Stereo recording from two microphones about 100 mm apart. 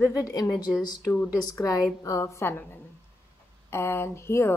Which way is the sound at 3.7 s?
25° left (ahead or behind).